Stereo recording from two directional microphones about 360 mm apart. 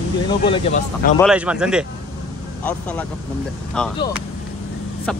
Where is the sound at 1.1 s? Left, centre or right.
Centre.